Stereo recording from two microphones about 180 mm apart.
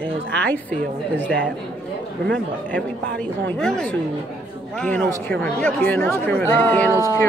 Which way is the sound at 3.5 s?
5° left (ahead or behind).